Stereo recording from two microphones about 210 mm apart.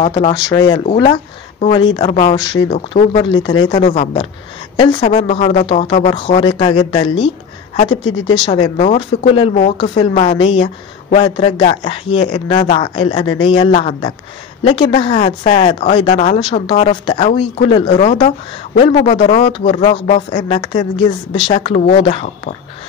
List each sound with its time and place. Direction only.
0.0 s speech: 30° left (ahead or behind)
0.5 s speech: 15° left (ahead or behind); by 3.2 s 35° left (ahead or behind)
3.3 s speech: 20° left (ahead or behind)
3.7 s speech: 35° left (ahead or behind)
4.7 s a woman's voice: 20° left (ahead or behind)
7.9 s a woman's voice: 75° left (ahead or behind)
8.5 s speech: 25° left (ahead or behind)